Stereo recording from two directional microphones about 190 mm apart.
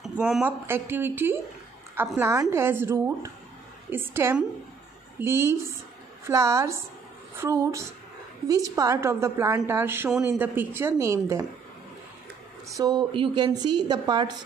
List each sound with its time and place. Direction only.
0.0 s a woman's voice: 5° right (ahead or behind)
12.6 s a woman's voice: 20° right (ahead or behind)